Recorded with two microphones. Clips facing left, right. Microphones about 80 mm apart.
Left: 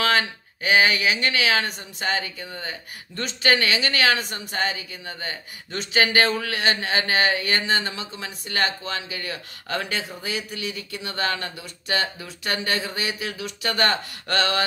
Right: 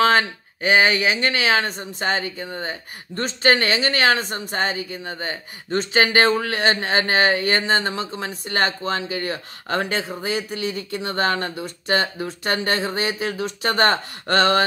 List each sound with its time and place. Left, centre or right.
0.0 s speech: right